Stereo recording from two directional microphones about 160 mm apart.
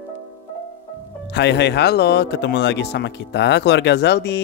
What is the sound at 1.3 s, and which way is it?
Speech, 90° left.